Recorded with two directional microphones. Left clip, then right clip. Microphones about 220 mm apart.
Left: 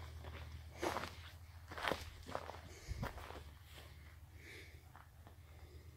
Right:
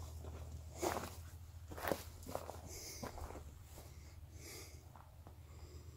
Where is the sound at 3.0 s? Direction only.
15° left (ahead or behind).